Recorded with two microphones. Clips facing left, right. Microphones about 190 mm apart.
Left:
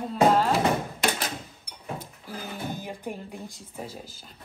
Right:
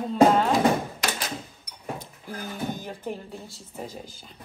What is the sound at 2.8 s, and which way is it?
Speech, 10° left (ahead or behind).